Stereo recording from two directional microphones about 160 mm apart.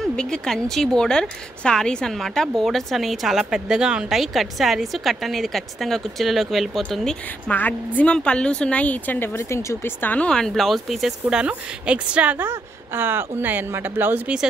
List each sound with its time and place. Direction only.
0.0 s speech: 5° left (ahead or behind)